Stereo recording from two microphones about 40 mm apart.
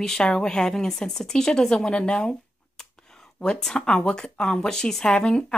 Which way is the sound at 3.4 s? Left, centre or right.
Centre.